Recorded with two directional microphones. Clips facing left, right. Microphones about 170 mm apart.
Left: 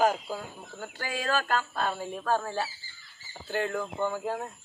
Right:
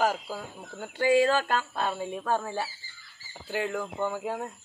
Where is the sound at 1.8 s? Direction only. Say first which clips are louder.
Right 1 dB; 20° right (ahead or behind).